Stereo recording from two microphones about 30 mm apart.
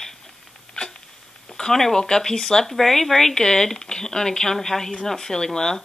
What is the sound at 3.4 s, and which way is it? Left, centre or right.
Speech, centre.